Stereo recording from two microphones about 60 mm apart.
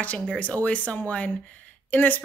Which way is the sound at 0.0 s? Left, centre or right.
Left.